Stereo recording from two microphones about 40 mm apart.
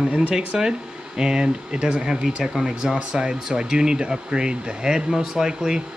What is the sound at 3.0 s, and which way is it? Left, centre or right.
Speech, right.